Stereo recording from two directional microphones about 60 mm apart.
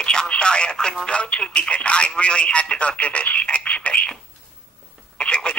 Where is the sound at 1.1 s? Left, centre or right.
Centre.